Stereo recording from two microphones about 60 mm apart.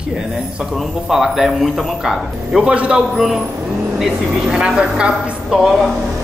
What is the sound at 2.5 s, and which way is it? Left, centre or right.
Speech, centre.